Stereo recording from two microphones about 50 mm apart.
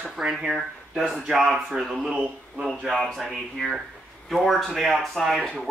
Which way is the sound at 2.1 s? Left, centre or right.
Centre.